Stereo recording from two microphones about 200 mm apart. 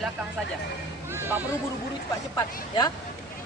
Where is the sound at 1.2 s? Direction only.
10° right (ahead or behind).